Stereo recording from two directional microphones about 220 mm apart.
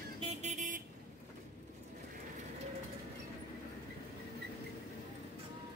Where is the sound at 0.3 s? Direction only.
35° right (ahead or behind).